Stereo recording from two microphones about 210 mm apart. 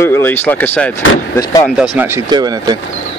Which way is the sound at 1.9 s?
10° right (ahead or behind).